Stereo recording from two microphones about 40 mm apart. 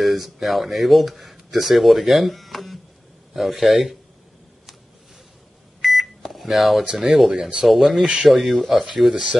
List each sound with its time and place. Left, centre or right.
0.0 s speech: centre
5.8 s microwave oven: centre
7.0 s speech: centre
9.1 s speech: right